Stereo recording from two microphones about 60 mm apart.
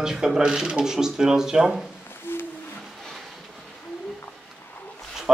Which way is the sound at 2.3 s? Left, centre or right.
Left.